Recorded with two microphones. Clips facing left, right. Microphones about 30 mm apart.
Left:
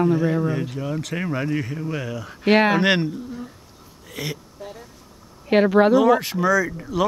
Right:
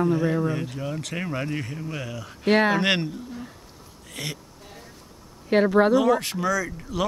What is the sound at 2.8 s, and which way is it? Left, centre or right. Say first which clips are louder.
Speech: left 4 dB; centre.